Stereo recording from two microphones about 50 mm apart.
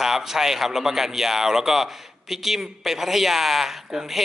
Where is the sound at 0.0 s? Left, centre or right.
Centre.